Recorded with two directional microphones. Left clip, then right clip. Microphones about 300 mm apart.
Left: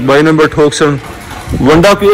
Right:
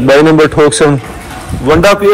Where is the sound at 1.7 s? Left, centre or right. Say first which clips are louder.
Even; left.